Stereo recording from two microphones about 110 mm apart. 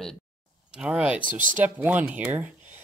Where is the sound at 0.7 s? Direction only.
10° right (ahead or behind).